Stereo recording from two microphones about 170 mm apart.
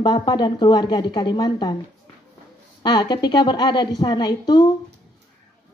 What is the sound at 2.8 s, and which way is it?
Speech, 25° left (ahead or behind).